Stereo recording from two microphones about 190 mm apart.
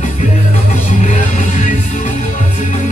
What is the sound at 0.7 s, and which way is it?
Music, 40° left (ahead or behind).